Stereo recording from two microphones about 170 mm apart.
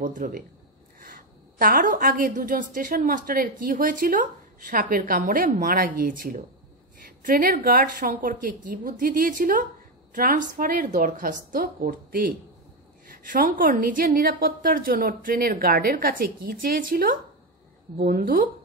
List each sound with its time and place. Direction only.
0.0 s a woman's voice: 50° right (ahead or behind)